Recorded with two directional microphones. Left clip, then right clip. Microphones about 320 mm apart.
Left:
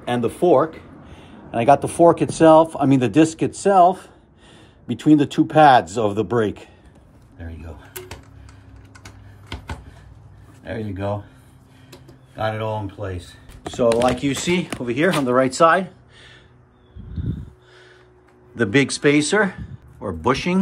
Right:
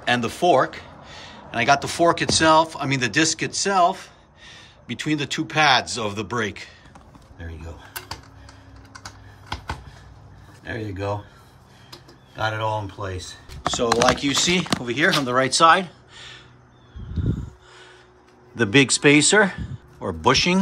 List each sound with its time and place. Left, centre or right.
0.0 s speech: centre
7.3 s speech: centre
9.0 s computer keyboard: centre
10.6 s speech: centre
12.4 s speech: centre
13.7 s speech: centre
18.5 s speech: centre